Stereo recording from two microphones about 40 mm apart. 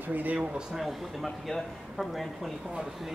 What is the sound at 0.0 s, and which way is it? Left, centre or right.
Speech, right.